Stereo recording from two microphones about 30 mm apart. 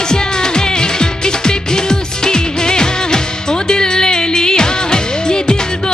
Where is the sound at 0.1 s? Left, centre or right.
Left.